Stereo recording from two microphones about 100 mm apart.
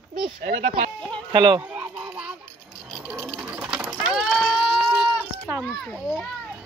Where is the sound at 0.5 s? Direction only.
90° right.